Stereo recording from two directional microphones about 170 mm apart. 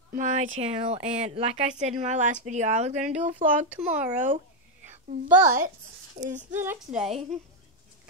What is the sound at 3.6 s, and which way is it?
Speech, 10° right (ahead or behind).